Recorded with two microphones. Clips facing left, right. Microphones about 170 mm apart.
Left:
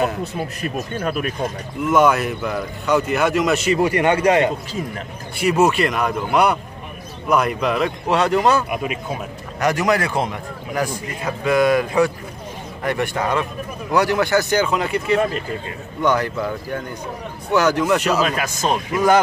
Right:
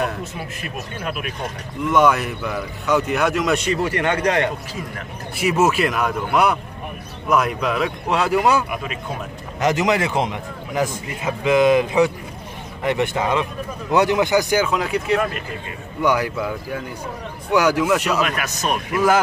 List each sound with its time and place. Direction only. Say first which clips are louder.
0.2 s speech: left 5 dB; 35° left (ahead or behind)
1.9 s speech: left 1 dB; centre (ahead or behind)
5.4 s speech: left 1 dB; centre (ahead or behind)
8.6 s speech: left 4 dB; 20° left (ahead or behind)
9.6 s a man's voice: even; 20° right (ahead or behind)
14.7 s speech: left 1 dB; centre (ahead or behind)
18.2 s speech: left 2 dB; 30° left (ahead or behind)